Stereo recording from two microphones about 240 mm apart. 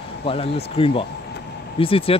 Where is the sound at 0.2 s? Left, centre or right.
Left.